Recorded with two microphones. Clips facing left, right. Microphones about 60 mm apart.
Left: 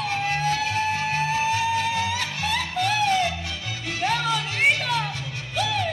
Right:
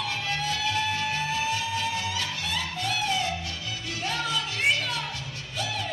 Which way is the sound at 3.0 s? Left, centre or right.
Left.